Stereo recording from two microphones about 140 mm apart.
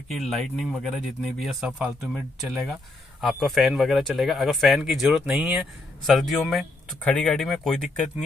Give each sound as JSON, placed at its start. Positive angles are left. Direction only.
{"t": 0.1, "sound": "speech", "side_deg": 0}